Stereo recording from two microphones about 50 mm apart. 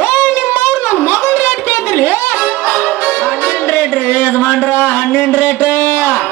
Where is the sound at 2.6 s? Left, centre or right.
Centre.